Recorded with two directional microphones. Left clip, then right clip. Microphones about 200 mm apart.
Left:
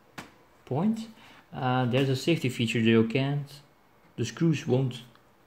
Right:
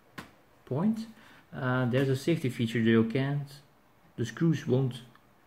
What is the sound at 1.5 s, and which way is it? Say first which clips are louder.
Speech: left 3 dB; 20° left (ahead or behind).